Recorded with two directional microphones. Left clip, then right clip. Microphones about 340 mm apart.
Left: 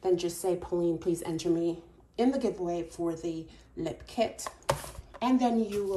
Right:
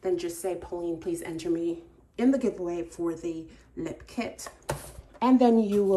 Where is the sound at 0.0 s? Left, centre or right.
Centre.